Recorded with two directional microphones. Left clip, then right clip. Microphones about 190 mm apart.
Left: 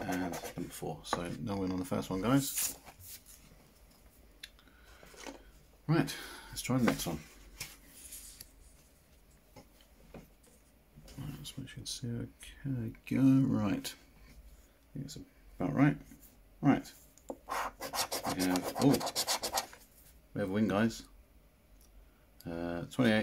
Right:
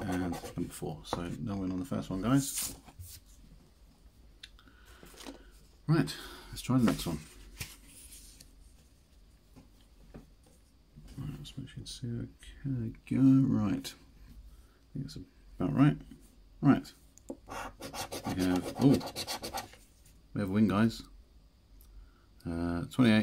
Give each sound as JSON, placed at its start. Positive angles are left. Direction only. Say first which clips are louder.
{"t": 0.0, "sound": "a sound", "louder": "right 1 dB", "side_deg": -30}
{"t": 1.4, "sound": "speech", "louder": "left 1 dB", "side_deg": 0}
{"t": 2.5, "sound": "speech", "louder": "left 1 dB", "side_deg": -20}
{"t": 4.4, "sound": "a sound", "louder": "left 1 dB", "side_deg": -5}
{"t": 5.3, "sound": "a sound", "louder": "left 1 dB", "side_deg": -45}
{"t": 5.9, "sound": "speech", "louder": "right 1 dB", "side_deg": -15}
{"t": 11.1, "sound": "speech", "louder": "even", "side_deg": 0}
{"t": 15.0, "sound": "speech", "louder": "right 1 dB", "side_deg": -20}
{"t": 16.6, "sound": "a sound", "louder": "right 2 dB", "side_deg": -25}
{"t": 17.5, "sound": "speech", "louder": "left 6 dB", "side_deg": 0}
{"t": 20.3, "sound": "speech", "louder": "right 1 dB", "side_deg": -25}
{"t": 22.4, "sound": "speech", "louder": "right 2 dB", "side_deg": -25}